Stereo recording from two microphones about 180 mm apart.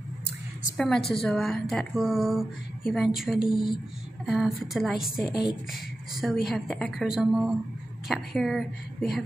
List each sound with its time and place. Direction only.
0.7 s a woman's voice: centre (ahead or behind)